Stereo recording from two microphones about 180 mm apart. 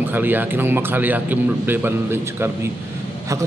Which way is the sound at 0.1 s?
10° right (ahead or behind).